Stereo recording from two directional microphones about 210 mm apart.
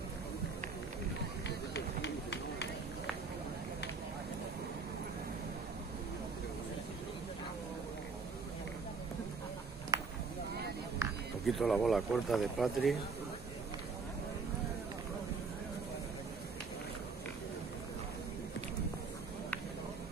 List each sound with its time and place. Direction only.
1.7 s run: 55° left (ahead or behind)
9.9 s a sound: 15° right (ahead or behind)
11.4 s speech: centre (ahead or behind)